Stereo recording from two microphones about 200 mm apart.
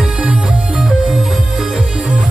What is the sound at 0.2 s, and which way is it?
Music, 5° right (ahead or behind).